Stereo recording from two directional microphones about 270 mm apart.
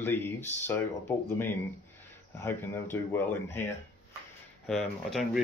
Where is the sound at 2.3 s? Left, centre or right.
Centre.